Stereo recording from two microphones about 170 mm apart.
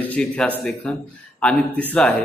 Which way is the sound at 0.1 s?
5° left (ahead or behind).